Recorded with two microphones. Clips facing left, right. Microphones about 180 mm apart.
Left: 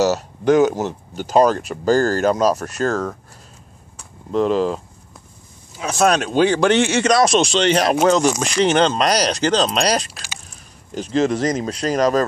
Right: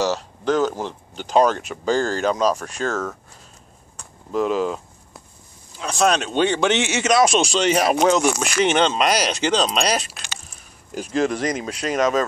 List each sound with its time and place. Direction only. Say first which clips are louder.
0.5 s speech: left 6 dB; 10° left (ahead or behind)
0.8 s speech: left 5 dB; 45° left (ahead or behind)
1.3 s speech: left 2 dB; centre (ahead or behind)
1.6 s speech: left 5 dB; 35° left (ahead or behind)
2.0 s speech: left 3 dB; 5° left (ahead or behind)
3.9 s a sound: left 3 dB; centre (ahead or behind)
5.8 s speech: left 2 dB; 5° left (ahead or behind)
11.1 s speech: left 3 dB; 30° left (ahead or behind)